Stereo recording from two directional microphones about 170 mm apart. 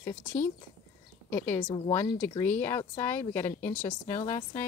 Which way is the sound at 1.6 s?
30° left (ahead or behind).